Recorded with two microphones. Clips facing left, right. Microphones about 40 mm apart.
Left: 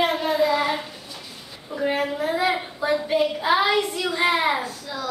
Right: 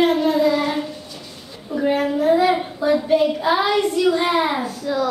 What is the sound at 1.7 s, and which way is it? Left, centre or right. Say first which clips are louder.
A woman's voice: right 5 dB; centre.